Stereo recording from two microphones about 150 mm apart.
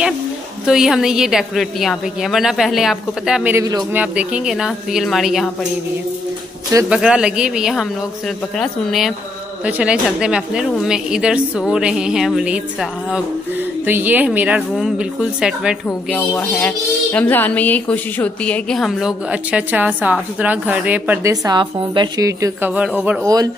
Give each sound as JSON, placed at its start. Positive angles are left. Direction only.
{"t": 0.7, "sound": "speech", "side_deg": -5}
{"t": 3.5, "sound": "a woman's voice", "side_deg": -25}
{"t": 3.9, "sound": "speech", "side_deg": -10}
{"t": 6.9, "sound": "speech", "side_deg": -5}
{"t": 13.8, "sound": "a woman's voice", "side_deg": -10}
{"t": 16.2, "sound": "speech", "side_deg": 10}
{"t": 21.3, "sound": "a woman's voice", "side_deg": -30}
{"t": 22.8, "sound": "a woman's voice", "side_deg": -10}
{"t": 23.2, "sound": "a woman's voice", "side_deg": -25}